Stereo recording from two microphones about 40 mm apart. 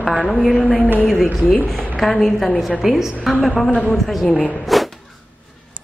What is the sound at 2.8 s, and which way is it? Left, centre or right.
A woman's voice, centre.